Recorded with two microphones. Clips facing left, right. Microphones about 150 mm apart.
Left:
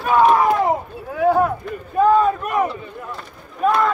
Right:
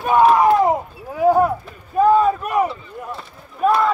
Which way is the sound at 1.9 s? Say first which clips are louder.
Right 1 dB; 10° right (ahead or behind).